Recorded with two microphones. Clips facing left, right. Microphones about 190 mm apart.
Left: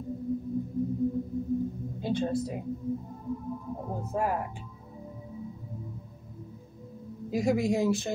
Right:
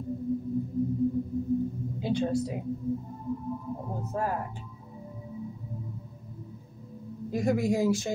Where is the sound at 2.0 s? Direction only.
10° right (ahead or behind).